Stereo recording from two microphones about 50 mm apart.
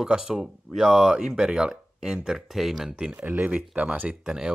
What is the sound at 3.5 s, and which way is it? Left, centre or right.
Speech, right.